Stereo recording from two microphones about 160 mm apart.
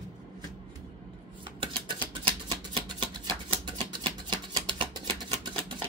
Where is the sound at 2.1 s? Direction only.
30° right (ahead or behind).